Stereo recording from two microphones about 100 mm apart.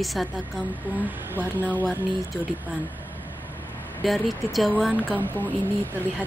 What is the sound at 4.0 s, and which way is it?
Speech, centre (ahead or behind).